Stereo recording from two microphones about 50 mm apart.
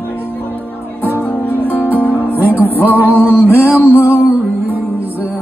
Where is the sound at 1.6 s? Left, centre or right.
Left.